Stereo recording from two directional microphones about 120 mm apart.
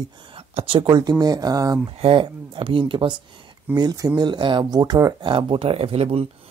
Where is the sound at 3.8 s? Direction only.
30° right (ahead or behind); by 6.2 s 55° right (ahead or behind).